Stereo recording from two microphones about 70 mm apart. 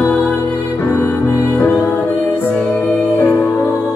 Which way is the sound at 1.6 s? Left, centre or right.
Left.